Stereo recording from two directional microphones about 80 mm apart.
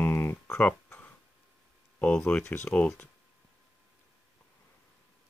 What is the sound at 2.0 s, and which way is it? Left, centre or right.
Speech, centre.